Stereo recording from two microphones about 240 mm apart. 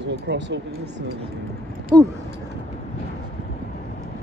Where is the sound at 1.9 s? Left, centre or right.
Centre.